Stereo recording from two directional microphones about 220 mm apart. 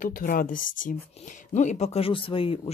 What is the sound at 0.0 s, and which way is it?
Speech, 40° left (ahead or behind).